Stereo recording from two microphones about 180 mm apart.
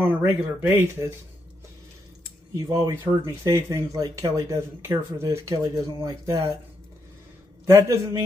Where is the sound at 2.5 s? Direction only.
15° right (ahead or behind).